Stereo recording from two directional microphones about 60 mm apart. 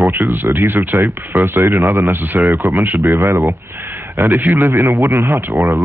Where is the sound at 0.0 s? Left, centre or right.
Right.